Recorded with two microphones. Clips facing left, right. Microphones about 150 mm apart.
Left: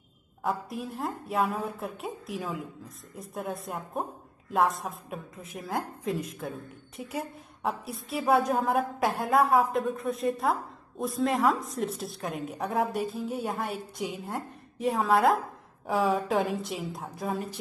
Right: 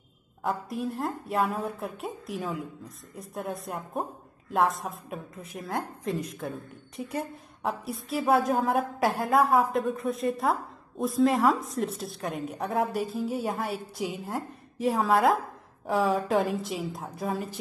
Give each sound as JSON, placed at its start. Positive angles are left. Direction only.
{"t": 0.4, "sound": "a woman's voice", "side_deg": 0}